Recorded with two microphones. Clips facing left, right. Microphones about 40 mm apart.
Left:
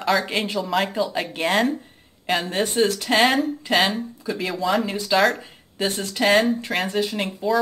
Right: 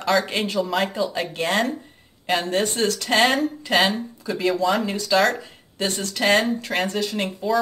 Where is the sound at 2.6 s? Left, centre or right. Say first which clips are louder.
Left 2 dB; centre.